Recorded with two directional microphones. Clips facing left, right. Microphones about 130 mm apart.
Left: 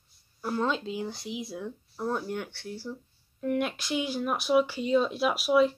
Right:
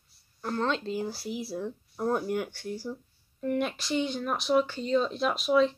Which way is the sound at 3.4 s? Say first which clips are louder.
Even; centre (ahead or behind).